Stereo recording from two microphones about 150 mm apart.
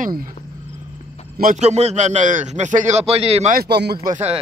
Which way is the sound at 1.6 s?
45° right (ahead or behind).